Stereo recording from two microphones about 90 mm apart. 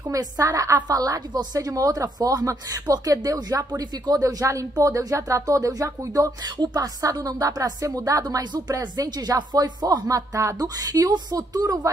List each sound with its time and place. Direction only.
0.1 s a woman's voice: 40° right (ahead or behind)